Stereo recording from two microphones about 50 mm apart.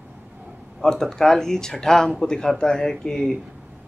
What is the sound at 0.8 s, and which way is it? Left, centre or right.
Speech, centre.